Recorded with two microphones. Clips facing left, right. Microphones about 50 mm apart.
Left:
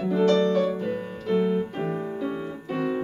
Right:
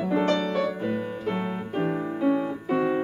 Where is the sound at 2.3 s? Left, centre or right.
Right.